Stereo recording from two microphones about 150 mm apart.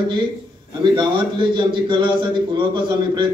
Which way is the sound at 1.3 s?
35° right (ahead or behind).